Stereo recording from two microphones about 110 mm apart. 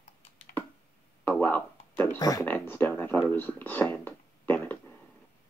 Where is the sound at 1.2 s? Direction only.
15° left (ahead or behind).